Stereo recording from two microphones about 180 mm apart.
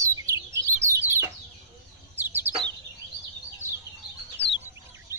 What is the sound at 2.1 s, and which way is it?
Bird, 10° right (ahead or behind).